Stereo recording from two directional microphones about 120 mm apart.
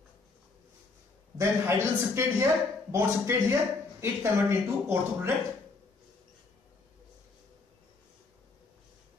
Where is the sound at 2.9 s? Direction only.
20° right (ahead or behind).